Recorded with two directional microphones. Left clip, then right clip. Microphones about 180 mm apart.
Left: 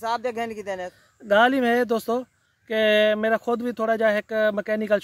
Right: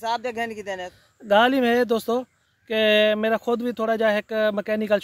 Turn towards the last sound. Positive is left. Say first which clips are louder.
# even
turn(degrees=-20)  # may be behind; listen again after turning